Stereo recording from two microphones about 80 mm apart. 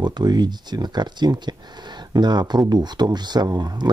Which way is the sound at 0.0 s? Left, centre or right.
Right.